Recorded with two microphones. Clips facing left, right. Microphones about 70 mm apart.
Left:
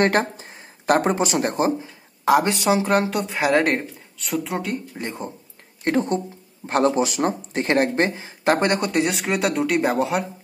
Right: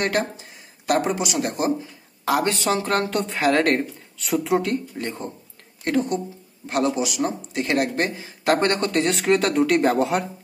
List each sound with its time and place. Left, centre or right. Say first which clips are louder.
0.0 s speech: left 4 dB; left; by 3.8 s centre
4.2 s speech: right 4 dB; centre
4.9 s speech: even; centre
5.9 s speech: left 1 dB; left; by 10.2 s centre